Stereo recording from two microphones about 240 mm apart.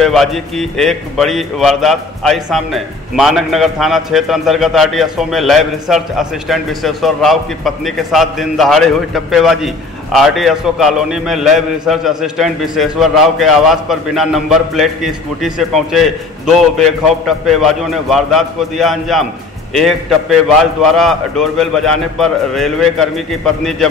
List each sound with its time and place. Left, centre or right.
0.0 s a man's voice: centre